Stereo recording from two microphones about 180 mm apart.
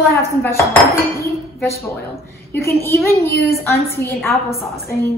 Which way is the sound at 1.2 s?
15° left (ahead or behind).